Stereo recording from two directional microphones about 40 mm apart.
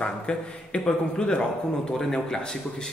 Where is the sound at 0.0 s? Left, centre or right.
Left.